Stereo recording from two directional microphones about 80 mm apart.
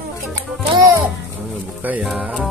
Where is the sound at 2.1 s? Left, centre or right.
Centre.